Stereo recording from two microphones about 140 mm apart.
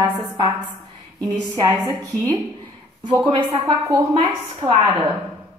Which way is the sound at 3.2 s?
35° right (ahead or behind).